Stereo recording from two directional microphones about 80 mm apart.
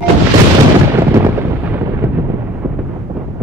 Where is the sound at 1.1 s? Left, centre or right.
Right.